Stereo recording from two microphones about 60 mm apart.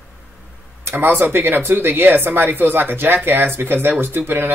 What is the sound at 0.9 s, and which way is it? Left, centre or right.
Speech, right.